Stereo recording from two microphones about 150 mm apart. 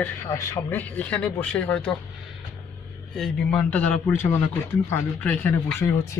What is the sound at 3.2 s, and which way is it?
Speech, 10° left (ahead or behind).